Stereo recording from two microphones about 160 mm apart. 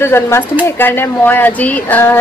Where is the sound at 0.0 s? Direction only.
15° left (ahead or behind).